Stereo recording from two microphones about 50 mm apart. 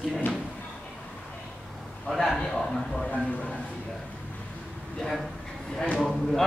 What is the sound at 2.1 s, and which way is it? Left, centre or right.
Speech, centre.